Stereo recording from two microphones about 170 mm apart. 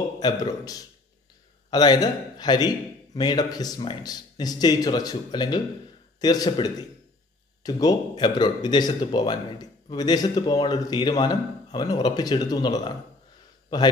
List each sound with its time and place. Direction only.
0.2 s speech: 20° left (ahead or behind)